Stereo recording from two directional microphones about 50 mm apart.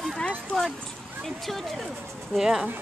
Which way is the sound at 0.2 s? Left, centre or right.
Centre.